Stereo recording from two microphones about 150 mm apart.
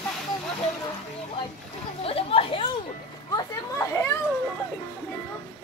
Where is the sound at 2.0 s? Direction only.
40° left (ahead or behind).